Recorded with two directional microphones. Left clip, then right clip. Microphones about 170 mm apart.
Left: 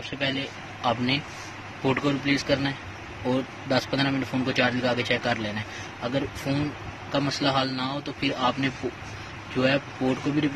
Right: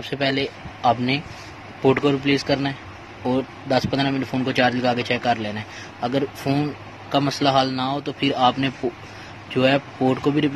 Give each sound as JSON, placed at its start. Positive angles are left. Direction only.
{"t": 0.8, "sound": "speech", "side_deg": -30}